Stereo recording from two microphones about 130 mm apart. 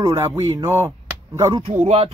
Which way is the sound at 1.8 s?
50° right (ahead or behind).